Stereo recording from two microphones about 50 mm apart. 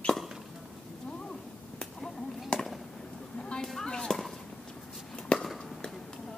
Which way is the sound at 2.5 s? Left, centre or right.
Left.